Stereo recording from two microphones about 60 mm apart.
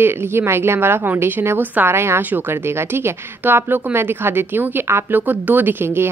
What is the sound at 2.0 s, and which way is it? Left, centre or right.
A woman's voice, right.